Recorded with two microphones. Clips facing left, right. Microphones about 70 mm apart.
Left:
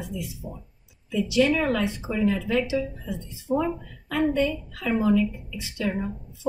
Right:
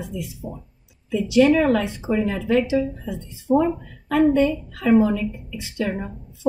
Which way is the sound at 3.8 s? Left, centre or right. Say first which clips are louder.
Right 7 dB; right.